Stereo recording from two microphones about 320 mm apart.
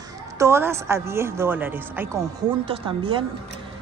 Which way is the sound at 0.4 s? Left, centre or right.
Centre.